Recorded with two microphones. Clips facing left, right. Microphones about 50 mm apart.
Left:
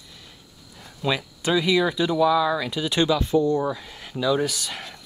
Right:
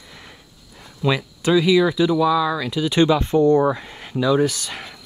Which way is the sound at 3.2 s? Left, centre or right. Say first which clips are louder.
Right 5 dB; right.